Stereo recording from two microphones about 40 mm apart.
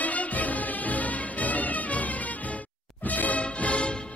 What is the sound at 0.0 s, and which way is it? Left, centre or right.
Music, left.